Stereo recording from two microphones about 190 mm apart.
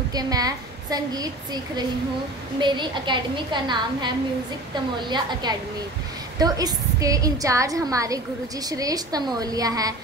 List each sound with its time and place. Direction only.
0.1 s a woman's voice: 20° right (ahead or behind)